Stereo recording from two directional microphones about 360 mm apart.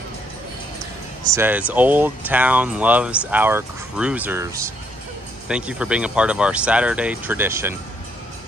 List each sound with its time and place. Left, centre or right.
1.3 s speech: centre